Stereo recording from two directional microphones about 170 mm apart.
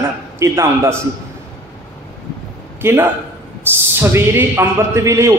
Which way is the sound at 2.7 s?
15° right (ahead or behind).